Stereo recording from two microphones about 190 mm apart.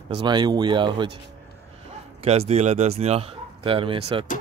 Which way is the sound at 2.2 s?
30° right (ahead or behind).